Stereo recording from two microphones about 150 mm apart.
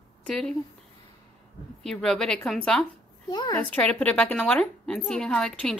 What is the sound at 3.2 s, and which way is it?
Speech, 25° left (ahead or behind).